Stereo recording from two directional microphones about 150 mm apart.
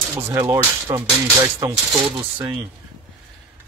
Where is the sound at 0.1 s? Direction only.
15° right (ahead or behind).